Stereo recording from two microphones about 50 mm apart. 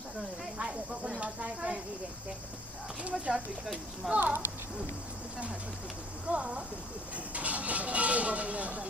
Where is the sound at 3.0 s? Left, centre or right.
Right.